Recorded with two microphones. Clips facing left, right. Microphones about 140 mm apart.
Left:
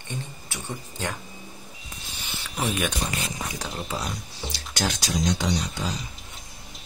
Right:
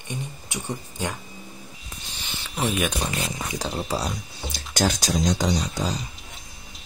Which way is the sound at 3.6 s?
35° right (ahead or behind).